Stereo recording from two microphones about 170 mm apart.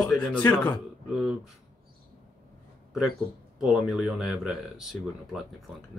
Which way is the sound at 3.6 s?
Centre (ahead or behind).